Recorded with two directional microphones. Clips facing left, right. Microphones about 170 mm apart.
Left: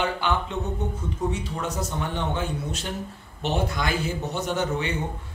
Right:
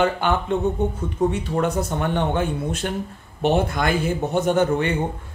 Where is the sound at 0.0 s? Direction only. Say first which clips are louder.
Right 5 dB; 50° right (ahead or behind).